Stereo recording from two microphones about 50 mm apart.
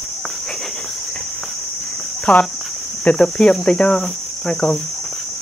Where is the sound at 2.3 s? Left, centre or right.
Centre.